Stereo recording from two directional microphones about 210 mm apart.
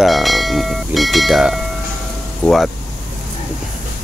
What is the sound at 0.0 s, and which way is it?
Speech, centre (ahead or behind).